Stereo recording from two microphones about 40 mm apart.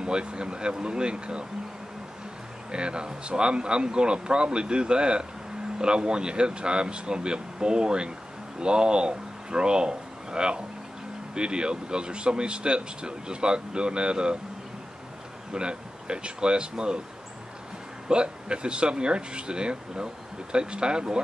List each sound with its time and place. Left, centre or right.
0.0 s speech: right
2.7 s speech: right
15.5 s speech: right
18.0 s speech: right